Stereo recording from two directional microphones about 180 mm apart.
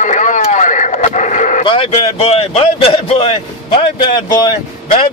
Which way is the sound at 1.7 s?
30° left (ahead or behind).